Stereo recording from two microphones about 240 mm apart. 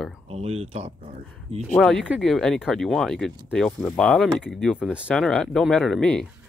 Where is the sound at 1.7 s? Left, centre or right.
Centre.